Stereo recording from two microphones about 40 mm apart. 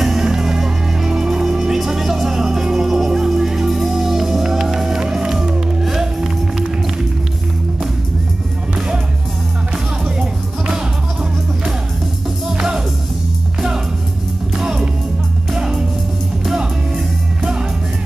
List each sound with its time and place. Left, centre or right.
0.0 s music: centre
12.5 s music: centre
14.6 s music: centre
17.4 s music: right